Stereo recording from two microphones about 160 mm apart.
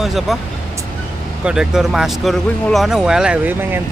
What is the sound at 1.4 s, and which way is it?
Speech, 5° right (ahead or behind).